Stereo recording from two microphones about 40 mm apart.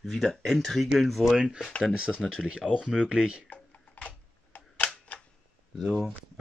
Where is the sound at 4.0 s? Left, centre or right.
Left.